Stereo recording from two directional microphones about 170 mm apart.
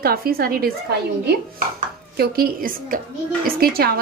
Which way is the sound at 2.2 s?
55° right (ahead or behind).